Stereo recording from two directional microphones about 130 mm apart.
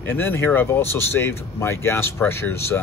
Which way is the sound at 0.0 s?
15° left (ahead or behind).